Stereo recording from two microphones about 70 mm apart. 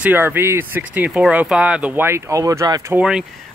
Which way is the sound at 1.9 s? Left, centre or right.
Right.